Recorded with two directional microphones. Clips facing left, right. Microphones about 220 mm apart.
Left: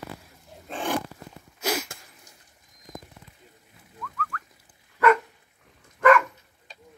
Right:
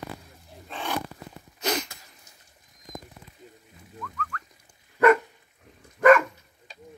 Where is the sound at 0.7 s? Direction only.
50° left (ahead or behind).